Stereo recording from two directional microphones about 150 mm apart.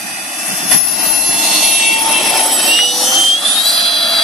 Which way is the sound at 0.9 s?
Centre (ahead or behind).